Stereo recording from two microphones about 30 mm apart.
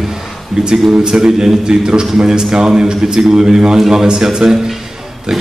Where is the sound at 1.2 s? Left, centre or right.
Right.